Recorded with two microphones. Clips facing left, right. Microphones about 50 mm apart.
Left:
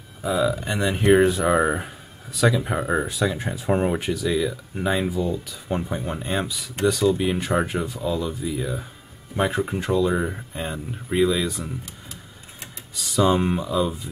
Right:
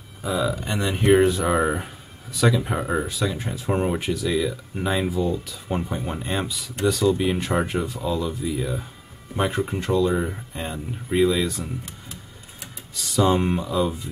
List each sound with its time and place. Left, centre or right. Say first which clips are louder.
0.2 s speech: left 2 dB; centre
2.9 s speech: left 4 dB; centre
13.1 s speech: even; centre